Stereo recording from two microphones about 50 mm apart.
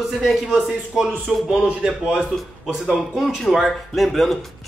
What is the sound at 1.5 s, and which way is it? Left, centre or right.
Speech, centre.